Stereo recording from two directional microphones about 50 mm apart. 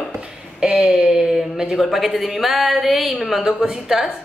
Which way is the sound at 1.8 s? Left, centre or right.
Centre.